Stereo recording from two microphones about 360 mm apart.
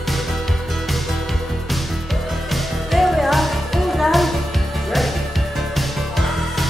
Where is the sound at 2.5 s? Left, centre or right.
Centre.